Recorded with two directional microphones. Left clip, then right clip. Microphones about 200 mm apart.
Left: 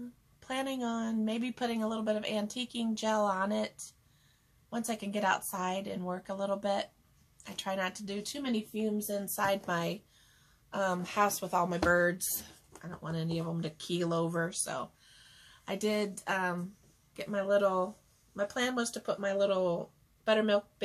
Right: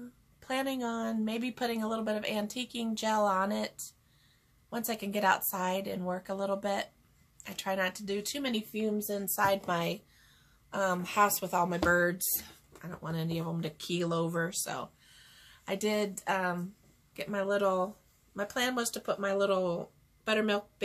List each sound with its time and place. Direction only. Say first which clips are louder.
0.4 s speech: right 2 dB; 15° right (ahead or behind)